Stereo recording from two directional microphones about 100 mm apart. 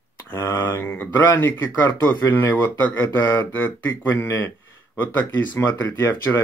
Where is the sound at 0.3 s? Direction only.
25° left (ahead or behind).